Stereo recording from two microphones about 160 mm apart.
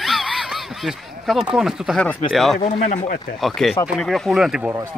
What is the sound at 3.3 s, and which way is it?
Speech, centre (ahead or behind).